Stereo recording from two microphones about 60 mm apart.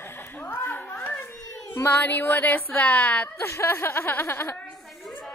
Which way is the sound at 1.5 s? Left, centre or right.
Left.